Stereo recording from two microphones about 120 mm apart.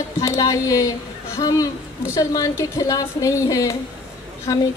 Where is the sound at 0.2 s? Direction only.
30° left (ahead or behind).